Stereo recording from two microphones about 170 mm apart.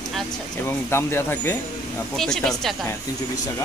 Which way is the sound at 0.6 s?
15° left (ahead or behind).